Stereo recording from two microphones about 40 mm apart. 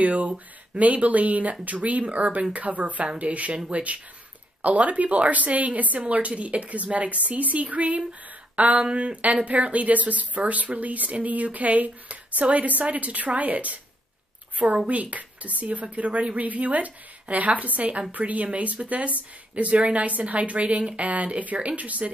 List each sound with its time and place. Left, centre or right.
0.0 s speech: right
14.9 s speech: right